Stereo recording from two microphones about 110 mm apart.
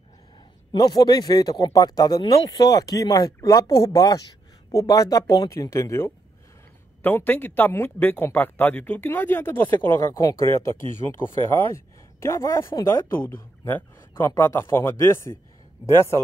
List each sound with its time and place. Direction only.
0.7 s speech: 35° left (ahead or behind)